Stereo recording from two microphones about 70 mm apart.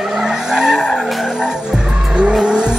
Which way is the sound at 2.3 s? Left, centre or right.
Centre.